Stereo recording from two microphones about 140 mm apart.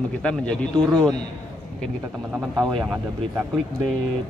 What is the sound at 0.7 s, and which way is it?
Speech, 25° right (ahead or behind).